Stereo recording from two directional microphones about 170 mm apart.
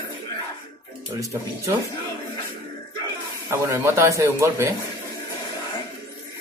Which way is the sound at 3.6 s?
15° right (ahead or behind).